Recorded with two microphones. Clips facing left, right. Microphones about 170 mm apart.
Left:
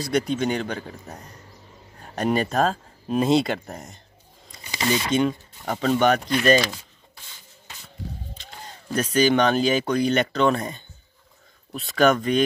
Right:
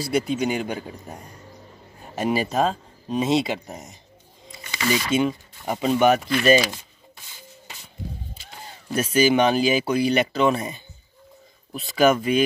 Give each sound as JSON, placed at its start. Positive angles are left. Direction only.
{"t": 0.0, "sound": "speech", "side_deg": -5}
{"t": 5.1, "sound": "speech", "side_deg": -5}
{"t": 8.4, "sound": "speech", "side_deg": -10}